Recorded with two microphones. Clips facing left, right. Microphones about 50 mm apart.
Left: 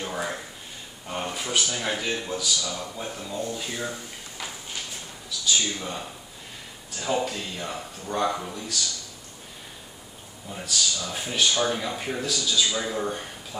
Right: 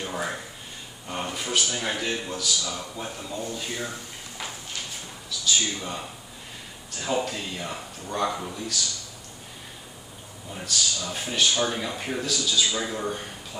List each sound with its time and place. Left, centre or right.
0.0 s a sound: centre
1.1 s speech: centre
5.4 s speech: centre
10.5 s speech: centre